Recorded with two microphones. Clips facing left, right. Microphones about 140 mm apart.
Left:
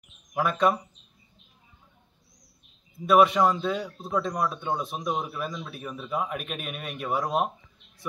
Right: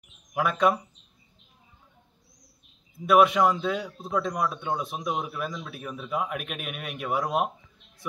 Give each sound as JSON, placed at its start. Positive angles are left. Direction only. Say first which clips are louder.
{"t": 0.3, "sound": "speech", "louder": "even", "side_deg": -5}
{"t": 3.1, "sound": "speech", "louder": "even", "side_deg": -5}